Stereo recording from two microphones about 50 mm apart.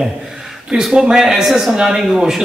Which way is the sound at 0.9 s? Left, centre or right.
Centre.